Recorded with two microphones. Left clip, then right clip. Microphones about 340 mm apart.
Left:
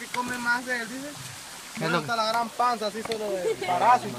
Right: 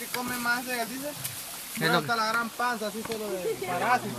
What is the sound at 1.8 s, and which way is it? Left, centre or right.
Speech, centre.